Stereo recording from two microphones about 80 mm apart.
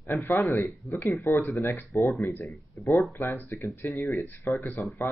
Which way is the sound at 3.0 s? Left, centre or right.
Left.